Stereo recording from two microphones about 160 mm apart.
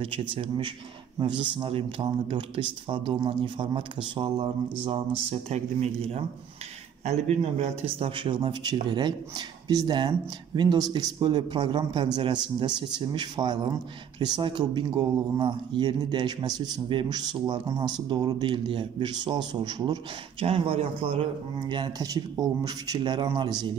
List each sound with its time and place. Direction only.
0.0 s speech: 35° right (ahead or behind)